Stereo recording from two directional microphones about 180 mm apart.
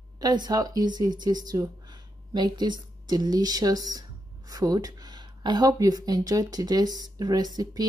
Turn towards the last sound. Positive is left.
turn(degrees=-20)  # may be behind; listen again after turning